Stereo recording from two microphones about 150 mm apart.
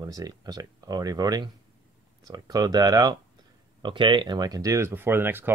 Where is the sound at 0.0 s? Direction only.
25° right (ahead or behind).